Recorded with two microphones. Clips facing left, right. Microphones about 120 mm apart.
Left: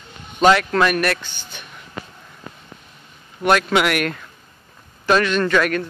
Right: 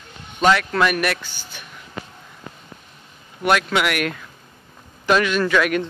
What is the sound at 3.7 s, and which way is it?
Speech, centre (ahead or behind).